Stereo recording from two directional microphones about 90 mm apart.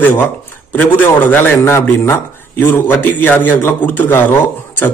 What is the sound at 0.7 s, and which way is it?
A man's voice, 20° left (ahead or behind).